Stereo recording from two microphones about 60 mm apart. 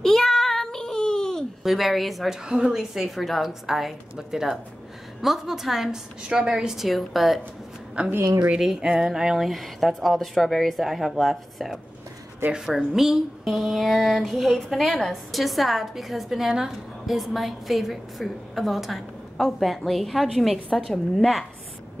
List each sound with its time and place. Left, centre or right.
0.0 s child singing: centre
1.6 s a woman's voice: centre
6.9 s a woman's voice: centre
8.0 s a woman's voice: right
8.5 s a woman's voice: centre